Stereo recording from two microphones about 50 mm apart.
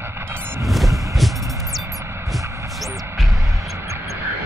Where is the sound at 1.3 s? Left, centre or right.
Right.